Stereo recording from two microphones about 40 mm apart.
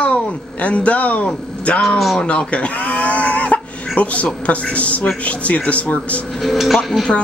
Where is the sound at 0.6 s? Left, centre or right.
Left.